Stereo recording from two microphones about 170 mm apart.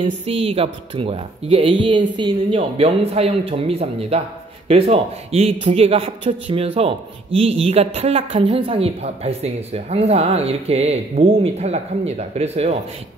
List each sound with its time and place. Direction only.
0.0 s a man's voice: 35° right (ahead or behind)